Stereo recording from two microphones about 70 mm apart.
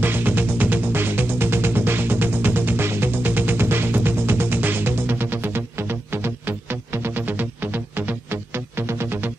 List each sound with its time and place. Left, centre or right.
0.0 s music: right